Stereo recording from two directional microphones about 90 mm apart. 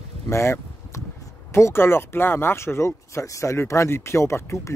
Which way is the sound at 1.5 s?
30° left (ahead or behind).